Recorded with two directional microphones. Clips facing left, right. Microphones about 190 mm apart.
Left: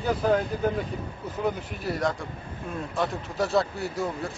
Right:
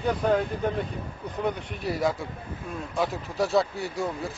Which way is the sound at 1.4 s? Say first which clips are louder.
Even; centre (ahead or behind).